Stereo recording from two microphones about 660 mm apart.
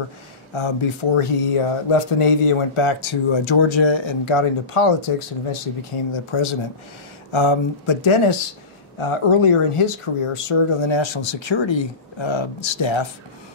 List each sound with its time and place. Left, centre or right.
0.6 s speech: left